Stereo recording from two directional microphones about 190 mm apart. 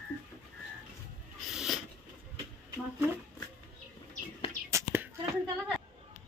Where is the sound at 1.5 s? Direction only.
Centre (ahead or behind).